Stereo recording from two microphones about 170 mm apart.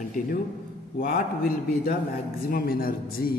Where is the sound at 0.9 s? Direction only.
55° left (ahead or behind).